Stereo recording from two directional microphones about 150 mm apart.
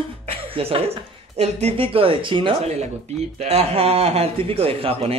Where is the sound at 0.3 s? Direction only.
40° right (ahead or behind).